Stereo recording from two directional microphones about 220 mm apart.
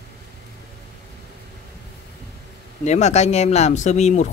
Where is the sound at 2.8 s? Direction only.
30° left (ahead or behind).